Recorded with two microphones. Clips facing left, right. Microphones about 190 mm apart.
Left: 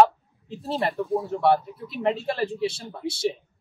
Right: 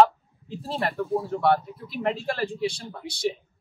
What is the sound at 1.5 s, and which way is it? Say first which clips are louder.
Speech: left 1 dB; 25° left (ahead or behind).